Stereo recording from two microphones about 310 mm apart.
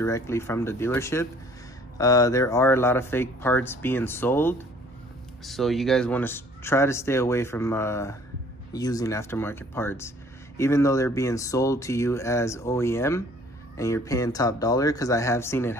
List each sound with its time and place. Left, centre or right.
0.0 s speech: centre